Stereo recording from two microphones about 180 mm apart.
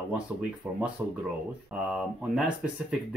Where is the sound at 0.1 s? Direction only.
5° right (ahead or behind).